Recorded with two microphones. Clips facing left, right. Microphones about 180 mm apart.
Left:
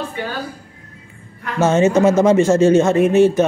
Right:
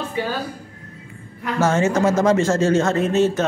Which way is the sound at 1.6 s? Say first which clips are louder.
Left 5 dB; 20° left (ahead or behind).